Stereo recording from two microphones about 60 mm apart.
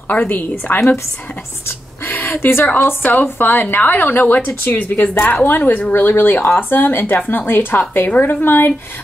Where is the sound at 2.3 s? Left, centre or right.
Left.